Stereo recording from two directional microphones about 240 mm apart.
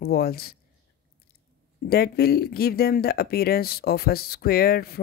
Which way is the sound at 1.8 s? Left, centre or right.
Left.